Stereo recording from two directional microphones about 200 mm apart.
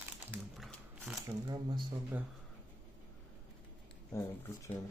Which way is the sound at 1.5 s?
20° right (ahead or behind).